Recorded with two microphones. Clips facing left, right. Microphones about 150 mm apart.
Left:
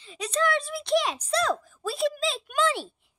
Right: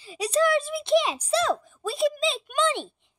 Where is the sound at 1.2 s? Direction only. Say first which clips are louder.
Right 2 dB; centre (ahead or behind).